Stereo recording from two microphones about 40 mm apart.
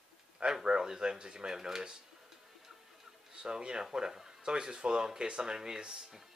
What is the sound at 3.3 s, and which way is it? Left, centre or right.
Speech, centre.